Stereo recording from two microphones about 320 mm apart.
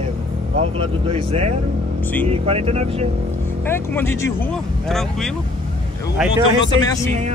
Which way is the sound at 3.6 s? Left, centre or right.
Centre.